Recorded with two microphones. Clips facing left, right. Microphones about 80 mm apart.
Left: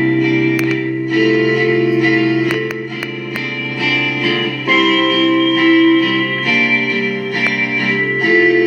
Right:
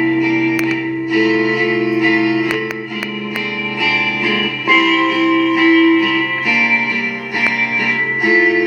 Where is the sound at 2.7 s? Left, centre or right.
Right.